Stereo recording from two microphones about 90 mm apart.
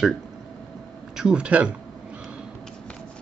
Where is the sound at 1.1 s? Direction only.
10° right (ahead or behind).